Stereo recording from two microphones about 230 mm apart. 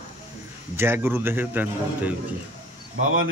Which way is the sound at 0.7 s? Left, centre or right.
Centre.